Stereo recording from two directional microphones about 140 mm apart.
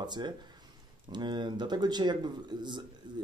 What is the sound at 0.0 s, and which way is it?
Speech, 30° right (ahead or behind).